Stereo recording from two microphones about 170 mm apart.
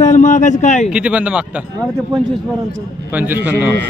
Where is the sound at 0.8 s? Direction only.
5° right (ahead or behind).